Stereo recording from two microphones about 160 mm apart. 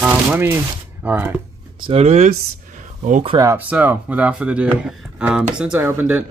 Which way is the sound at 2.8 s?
50° right (ahead or behind).